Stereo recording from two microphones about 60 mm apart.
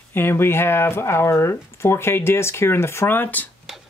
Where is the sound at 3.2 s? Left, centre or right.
Left.